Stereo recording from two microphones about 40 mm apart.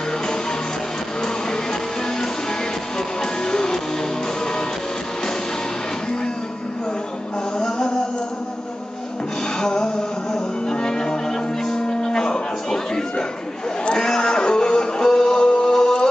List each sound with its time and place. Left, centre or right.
1.2 s music: centre
7.5 s music: centre
9.6 s music: centre